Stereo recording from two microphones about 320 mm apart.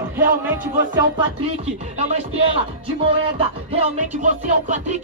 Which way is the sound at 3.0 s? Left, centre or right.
Centre.